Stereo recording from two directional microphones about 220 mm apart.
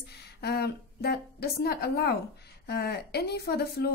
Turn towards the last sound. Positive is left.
turn(degrees=45)  # may be behind; listen again after turning